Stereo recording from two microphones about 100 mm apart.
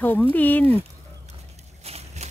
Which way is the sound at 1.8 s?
90° right.